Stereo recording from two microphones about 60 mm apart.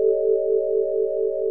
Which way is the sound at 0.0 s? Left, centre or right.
Centre.